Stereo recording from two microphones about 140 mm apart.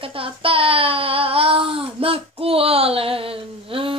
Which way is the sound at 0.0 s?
40° right (ahead or behind).